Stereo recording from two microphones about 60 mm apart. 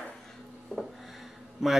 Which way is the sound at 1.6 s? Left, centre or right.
Centre.